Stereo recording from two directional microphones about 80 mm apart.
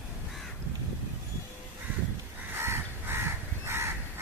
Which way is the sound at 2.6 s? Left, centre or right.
Right.